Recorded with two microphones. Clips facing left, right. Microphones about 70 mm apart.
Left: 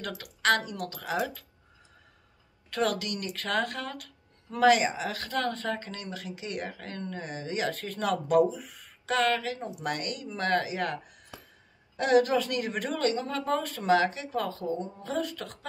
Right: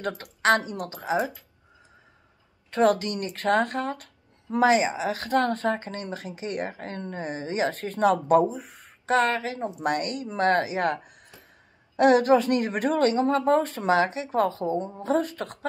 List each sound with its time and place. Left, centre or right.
0.2 s speech: right
2.7 s speech: right
5.1 s speech: right